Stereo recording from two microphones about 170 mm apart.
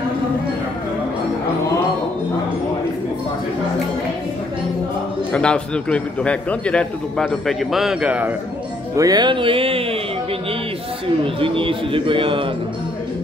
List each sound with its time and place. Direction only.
5.3 s a man's voice: 5° left (ahead or behind)
8.9 s music: 20° right (ahead or behind)
11.3 s a man's voice: 30° right (ahead or behind)